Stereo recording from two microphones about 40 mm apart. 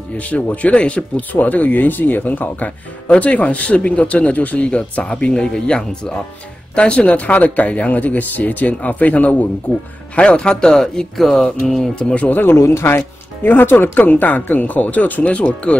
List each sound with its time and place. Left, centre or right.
0.2 s speech: left
1.3 s speech: left
4.6 s speech: left
7.2 s speech: left
10.1 s speech: left
11.1 s music: centre
11.6 s speech: centre
11.9 s speech: left
12.3 s speech: left
13.9 s speech: left